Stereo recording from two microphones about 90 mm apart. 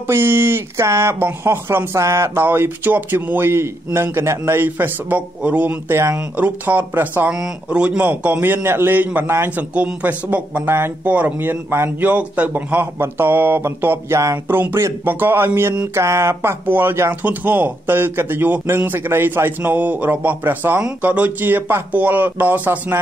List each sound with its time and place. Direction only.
0.0 s speech: 25° right (ahead or behind)
5.9 s speech: 30° right (ahead or behind)
6.3 s speech: 20° right (ahead or behind)
7.3 s speech: 10° right (ahead or behind)